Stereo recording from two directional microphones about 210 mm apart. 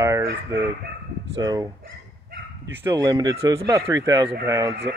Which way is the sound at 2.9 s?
20° right (ahead or behind).